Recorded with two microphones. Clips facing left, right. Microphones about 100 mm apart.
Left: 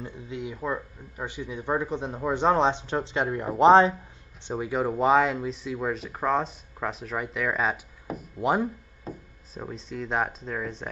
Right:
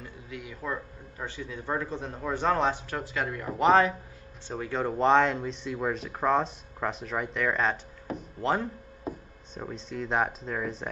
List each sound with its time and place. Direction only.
0.0 s speech: 25° left (ahead or behind)
4.5 s speech: 15° left (ahead or behind)
9.1 s speech: 10° right (ahead or behind)
9.5 s speech: centre (ahead or behind)